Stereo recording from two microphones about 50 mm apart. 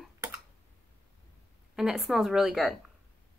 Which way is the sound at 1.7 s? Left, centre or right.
Centre.